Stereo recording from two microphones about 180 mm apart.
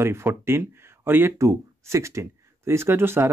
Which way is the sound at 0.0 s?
15° right (ahead or behind).